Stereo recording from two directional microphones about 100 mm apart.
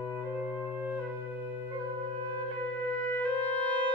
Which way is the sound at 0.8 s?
20° right (ahead or behind).